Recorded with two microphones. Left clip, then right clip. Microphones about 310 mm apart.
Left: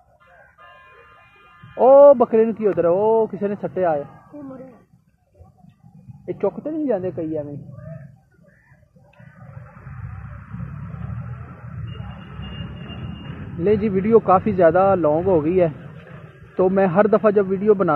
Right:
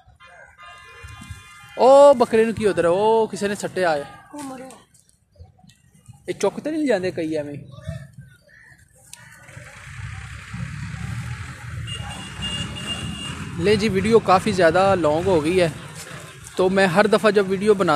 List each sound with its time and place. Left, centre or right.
1.8 s speech: centre
6.2 s speech: right
12.9 s vehicle: right
13.7 s speech: centre